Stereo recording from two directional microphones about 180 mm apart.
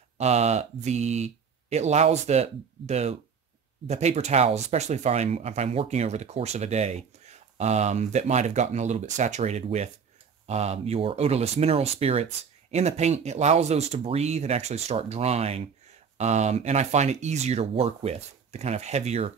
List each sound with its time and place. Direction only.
0.2 s speech: 40° right (ahead or behind)